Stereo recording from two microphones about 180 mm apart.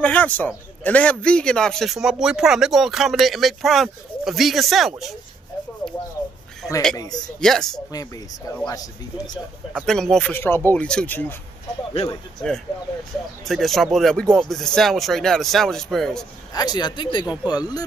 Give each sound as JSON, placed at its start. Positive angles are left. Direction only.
{"t": 0.0, "sound": "speech", "side_deg": 10}
{"t": 5.8, "sound": "rub", "side_deg": 5}
{"t": 7.3, "sound": "speech", "side_deg": 5}
{"t": 7.9, "sound": "speech", "side_deg": 20}
{"t": 9.8, "sound": "speech", "side_deg": 0}
{"t": 13.5, "sound": "speech", "side_deg": 0}
{"t": 16.5, "sound": "speech", "side_deg": 20}